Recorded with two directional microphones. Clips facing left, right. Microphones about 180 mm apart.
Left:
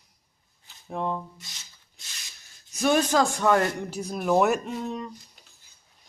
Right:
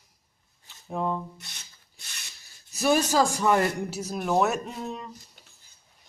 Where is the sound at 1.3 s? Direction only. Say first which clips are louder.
Right 1 dB; 60° right (ahead or behind).